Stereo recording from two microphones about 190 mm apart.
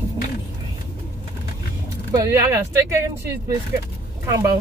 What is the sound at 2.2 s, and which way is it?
Speech, 15° right (ahead or behind).